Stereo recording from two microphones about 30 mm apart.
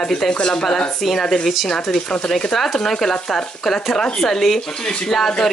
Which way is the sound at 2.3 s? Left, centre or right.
Centre.